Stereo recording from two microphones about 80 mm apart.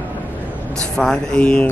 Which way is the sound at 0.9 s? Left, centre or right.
Centre.